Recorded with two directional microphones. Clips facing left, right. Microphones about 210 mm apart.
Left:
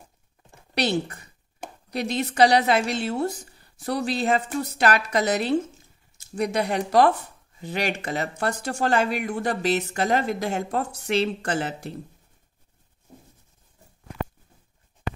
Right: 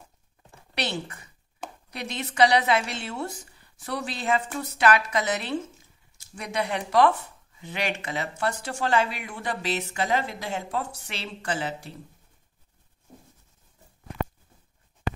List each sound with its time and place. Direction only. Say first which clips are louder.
0.7 s a woman's voice: left 7 dB; 40° left (ahead or behind)